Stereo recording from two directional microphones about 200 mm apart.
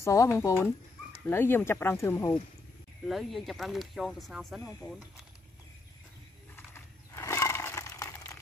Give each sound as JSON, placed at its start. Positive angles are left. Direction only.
{"t": 0.0, "sound": "speech", "side_deg": 15}
{"t": 3.1, "sound": "speech", "side_deg": 0}
{"t": 6.5, "sound": "a sound", "side_deg": 15}